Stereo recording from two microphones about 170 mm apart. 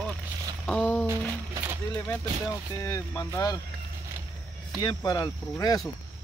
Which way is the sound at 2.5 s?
20° left (ahead or behind).